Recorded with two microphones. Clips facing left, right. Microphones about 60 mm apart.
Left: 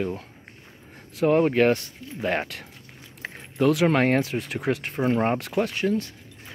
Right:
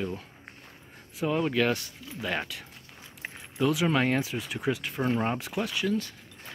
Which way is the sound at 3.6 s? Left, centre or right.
Left.